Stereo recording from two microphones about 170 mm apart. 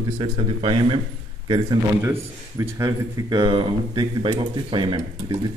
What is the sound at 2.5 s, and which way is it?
Speech, 20° right (ahead or behind).